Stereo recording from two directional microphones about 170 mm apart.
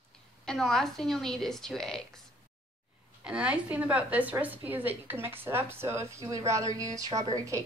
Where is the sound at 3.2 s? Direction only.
5° right (ahead or behind).